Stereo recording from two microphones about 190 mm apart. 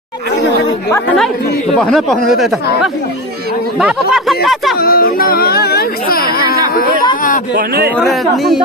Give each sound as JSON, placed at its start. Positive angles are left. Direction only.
{"t": 1.8, "sound": "speech", "side_deg": 0}
{"t": 4.7, "sound": "music", "side_deg": 50}
{"t": 7.5, "sound": "a man's voice", "side_deg": -50}
{"t": 8.0, "sound": "speech", "side_deg": 0}